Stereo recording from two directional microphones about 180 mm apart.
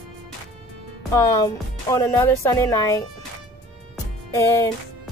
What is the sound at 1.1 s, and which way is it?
A woman's voice, 15° left (ahead or behind).